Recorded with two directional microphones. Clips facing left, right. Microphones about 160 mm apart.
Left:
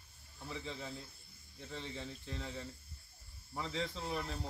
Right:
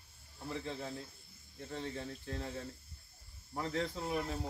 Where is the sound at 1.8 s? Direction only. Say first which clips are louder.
Right 3 dB; 55° right (ahead or behind).